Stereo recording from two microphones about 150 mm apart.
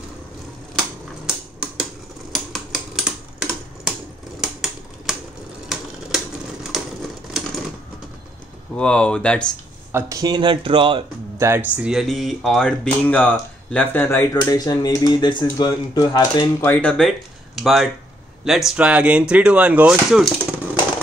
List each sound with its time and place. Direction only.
0.7 s typewriter: 5° right (ahead or behind)
6.7 s typewriter: centre (ahead or behind)
8.7 s speech: 5° left (ahead or behind)
9.9 s speech: 20° right (ahead or behind)
11.3 s speech: 20° right (ahead or behind)
11.7 s speech: 5° right (ahead or behind); by 16.4 s 30° left (ahead or behind)
16.6 s speech: 10° left (ahead or behind)